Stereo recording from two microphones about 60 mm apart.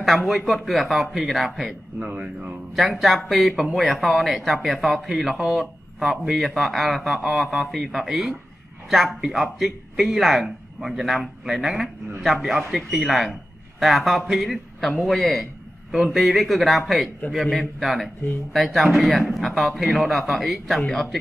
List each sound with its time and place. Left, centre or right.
0.0 s a man's voice: centre
2.0 s speech: right
2.7 s a man's voice: centre
9.3 s a man's voice: centre